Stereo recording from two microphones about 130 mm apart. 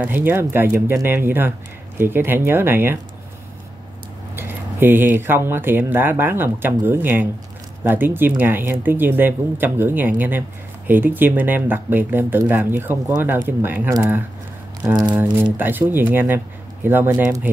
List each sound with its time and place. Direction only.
0.0 s speech: 15° right (ahead or behind)
4.4 s speech: 15° right (ahead or behind)